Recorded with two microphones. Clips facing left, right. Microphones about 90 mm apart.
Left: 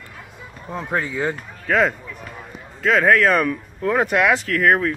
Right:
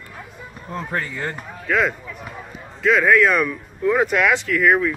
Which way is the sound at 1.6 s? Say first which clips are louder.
Left 2 dB; 35° left (ahead or behind).